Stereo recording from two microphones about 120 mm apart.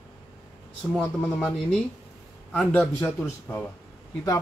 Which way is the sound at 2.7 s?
15° left (ahead or behind).